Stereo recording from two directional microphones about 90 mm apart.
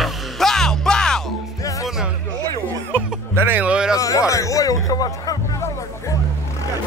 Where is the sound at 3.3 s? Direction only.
20° right (ahead or behind).